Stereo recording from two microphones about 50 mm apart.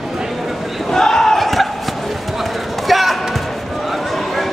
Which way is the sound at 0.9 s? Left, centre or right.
Centre.